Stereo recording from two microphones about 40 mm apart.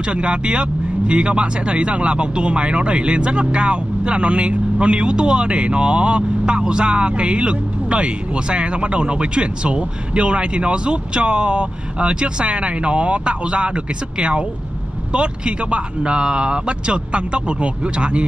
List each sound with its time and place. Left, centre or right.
0.0 s speech: right